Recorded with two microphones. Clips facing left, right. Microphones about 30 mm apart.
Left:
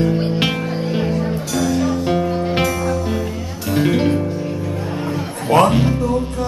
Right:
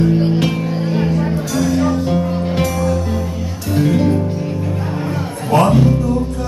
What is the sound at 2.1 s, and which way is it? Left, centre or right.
Music, centre.